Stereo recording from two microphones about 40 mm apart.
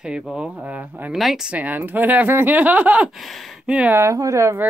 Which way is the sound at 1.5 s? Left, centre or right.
Right.